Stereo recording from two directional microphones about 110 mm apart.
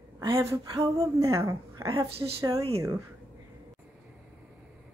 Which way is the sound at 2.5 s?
60° right (ahead or behind).